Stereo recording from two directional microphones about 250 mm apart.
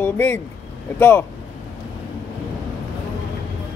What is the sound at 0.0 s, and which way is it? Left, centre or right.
Speech, centre.